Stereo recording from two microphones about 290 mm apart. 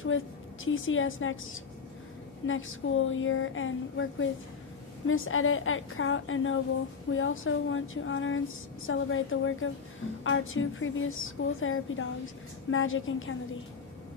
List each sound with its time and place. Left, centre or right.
0.7 s a woman's voice: left